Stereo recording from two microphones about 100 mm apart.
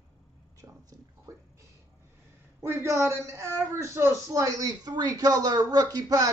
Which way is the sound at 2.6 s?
25° right (ahead or behind).